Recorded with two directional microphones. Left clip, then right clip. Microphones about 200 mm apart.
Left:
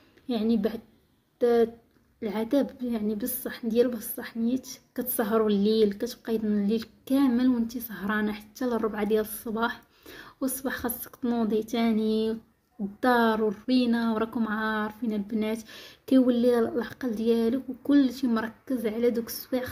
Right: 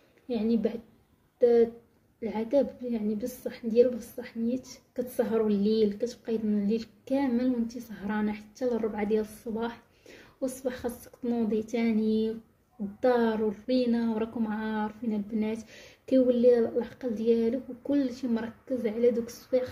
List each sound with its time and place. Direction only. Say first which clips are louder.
0.3 s a woman's voice: left 1 dB; 30° left (ahead or behind)